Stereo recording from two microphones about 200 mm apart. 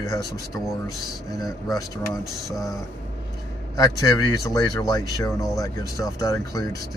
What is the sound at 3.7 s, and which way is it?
Speech, 20° left (ahead or behind).